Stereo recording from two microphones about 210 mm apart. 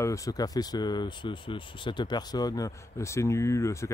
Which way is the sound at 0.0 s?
15° left (ahead or behind).